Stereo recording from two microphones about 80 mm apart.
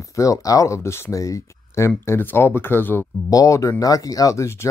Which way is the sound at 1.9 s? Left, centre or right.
Left.